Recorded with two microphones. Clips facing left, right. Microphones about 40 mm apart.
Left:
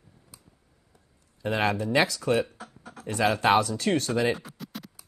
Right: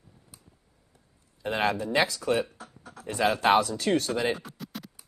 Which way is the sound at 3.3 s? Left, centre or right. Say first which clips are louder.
Right 1 dB; left.